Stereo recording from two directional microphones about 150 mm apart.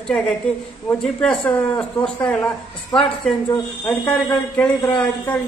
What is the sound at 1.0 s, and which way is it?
A woman's voice, 5° left (ahead or behind).